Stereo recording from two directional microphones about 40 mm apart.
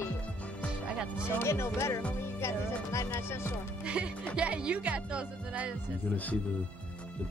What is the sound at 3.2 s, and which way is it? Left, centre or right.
Speech, left.